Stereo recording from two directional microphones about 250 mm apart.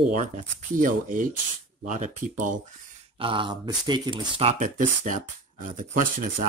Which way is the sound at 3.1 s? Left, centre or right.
Centre.